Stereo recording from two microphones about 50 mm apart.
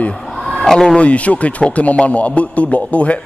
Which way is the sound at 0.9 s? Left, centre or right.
Left.